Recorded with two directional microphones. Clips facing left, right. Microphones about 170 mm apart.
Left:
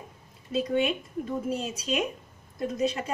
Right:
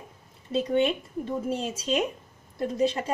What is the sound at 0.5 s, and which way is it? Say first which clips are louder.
A woman's voice: right 2 dB; 30° right (ahead or behind).